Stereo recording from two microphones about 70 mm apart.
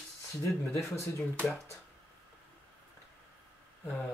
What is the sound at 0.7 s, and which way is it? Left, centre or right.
Speech, left.